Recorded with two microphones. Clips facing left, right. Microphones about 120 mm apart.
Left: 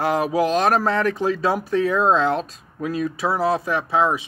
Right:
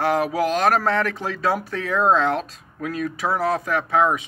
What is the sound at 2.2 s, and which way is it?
Speech, 30° left (ahead or behind).